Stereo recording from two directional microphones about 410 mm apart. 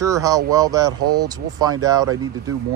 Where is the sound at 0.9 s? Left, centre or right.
Right.